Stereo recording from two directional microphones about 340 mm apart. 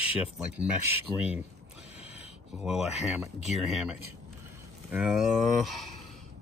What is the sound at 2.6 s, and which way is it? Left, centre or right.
Speech, centre.